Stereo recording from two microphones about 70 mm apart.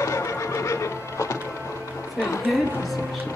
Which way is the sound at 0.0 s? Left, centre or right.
Left.